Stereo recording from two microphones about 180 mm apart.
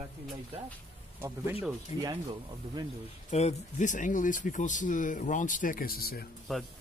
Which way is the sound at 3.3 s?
35° left (ahead or behind).